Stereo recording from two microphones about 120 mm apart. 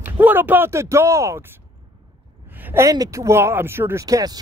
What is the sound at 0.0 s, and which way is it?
Speech, 15° right (ahead or behind).